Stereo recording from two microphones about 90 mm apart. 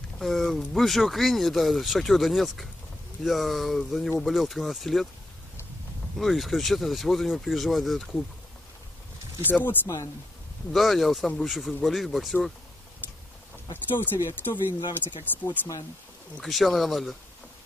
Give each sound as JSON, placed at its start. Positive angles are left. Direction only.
{"t": 0.2, "sound": "speech", "side_deg": 0}
{"t": 6.1, "sound": "speech", "side_deg": 0}
{"t": 9.4, "sound": "speech", "side_deg": 20}
{"t": 10.7, "sound": "speech", "side_deg": 0}
{"t": 13.8, "sound": "speech", "side_deg": 25}
{"t": 16.3, "sound": "speech", "side_deg": 0}